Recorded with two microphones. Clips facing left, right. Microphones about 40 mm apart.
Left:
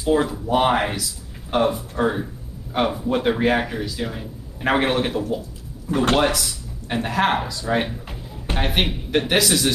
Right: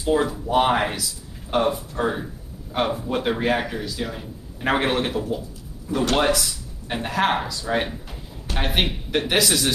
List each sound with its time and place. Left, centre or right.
0.0 s speech: centre